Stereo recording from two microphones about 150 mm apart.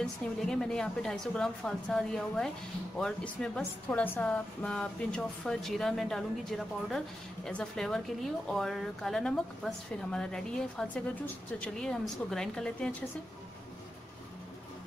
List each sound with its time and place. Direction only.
0.0 s a woman's voice: 5° left (ahead or behind)